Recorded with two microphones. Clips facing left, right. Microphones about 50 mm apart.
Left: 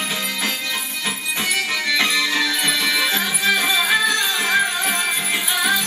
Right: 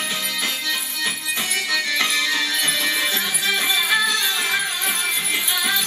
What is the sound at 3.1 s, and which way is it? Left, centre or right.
Music, centre.